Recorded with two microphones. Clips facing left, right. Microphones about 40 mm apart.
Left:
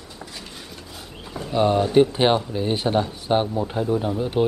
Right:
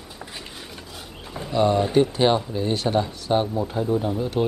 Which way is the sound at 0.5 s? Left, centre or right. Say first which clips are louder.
Even; centre.